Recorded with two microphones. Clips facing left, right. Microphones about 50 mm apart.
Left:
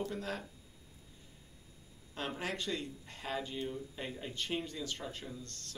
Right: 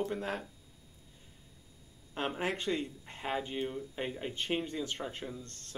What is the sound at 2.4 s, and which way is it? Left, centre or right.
Speech, right.